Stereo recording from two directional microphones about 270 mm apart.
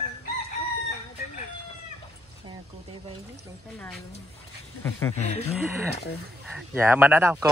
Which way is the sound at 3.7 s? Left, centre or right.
Centre.